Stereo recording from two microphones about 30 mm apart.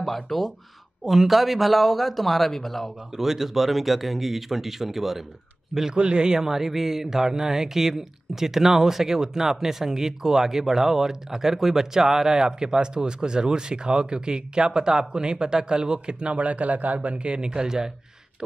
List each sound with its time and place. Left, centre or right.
0.0 s speech: centre
1.0 s speech: centre
3.2 s speech: centre
5.9 s speech: right
17.2 s speech: right